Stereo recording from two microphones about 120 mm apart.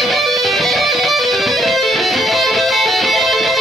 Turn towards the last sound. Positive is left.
turn(degrees=0)  # may be behind; listen again after turning